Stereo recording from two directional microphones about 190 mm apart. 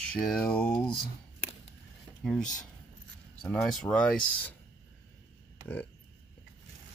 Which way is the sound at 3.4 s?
Centre (ahead or behind).